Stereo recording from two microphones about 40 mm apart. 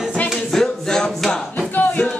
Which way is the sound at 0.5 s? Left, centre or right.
Centre.